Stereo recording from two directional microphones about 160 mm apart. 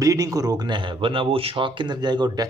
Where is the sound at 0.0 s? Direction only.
20° right (ahead or behind).